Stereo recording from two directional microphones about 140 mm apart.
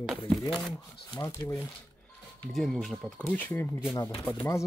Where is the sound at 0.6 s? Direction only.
Centre (ahead or behind).